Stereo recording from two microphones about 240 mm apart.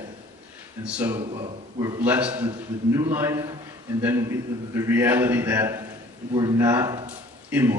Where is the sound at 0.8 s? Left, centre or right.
Centre.